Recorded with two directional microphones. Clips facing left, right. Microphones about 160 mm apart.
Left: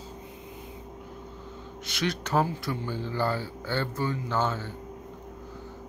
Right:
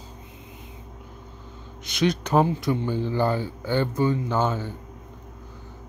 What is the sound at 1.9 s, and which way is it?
Speech, 20° right (ahead or behind).